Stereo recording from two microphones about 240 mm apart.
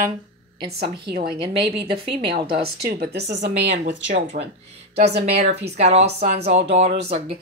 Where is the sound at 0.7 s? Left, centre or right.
Right.